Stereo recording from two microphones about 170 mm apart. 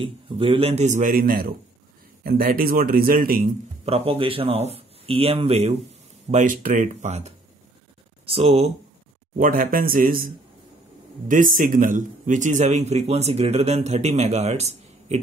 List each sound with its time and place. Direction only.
0.0 s a man's voice: 30° right (ahead or behind); by 3.5 s 55° right (ahead or behind)
3.8 s a man's voice: 35° right (ahead or behind)
6.3 s a man's voice: 50° right (ahead or behind); by 8.7 s 35° right (ahead or behind)
9.4 s a man's voice: 55° right (ahead or behind)